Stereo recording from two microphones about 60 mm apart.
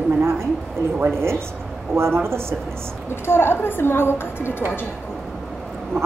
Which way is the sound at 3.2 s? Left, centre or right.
Left.